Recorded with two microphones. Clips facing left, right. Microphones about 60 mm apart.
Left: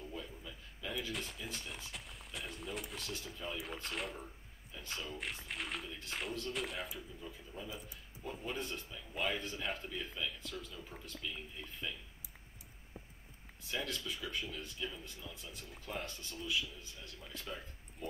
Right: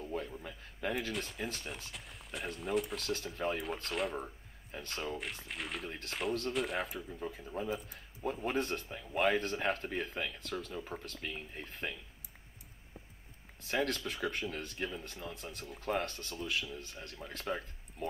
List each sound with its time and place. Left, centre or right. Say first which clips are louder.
0.0 s a sound: right 7 dB; right
1.1 s speech: right 3 dB; centre
1.4 s speech: right 5 dB; right
1.9 s a sound: right 2 dB; centre
2.7 s speech: right 12 dB; centre
3.0 s speech: right 8 dB; right
3.6 s speech: right 6 dB; centre
4.9 s speech: right 5 dB; right
5.2 s speech: right 1 dB; centre
5.9 s speech: right 4 dB; right
6.5 s speech: right 6 dB; centre
6.9 s speech: right 6 dB; right
13.6 s speech: right 7 dB; right